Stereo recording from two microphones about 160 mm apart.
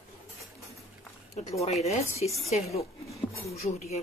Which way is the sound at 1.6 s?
45° left (ahead or behind).